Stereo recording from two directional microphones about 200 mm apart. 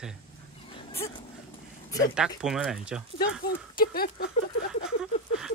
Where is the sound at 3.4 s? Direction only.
50° left (ahead or behind).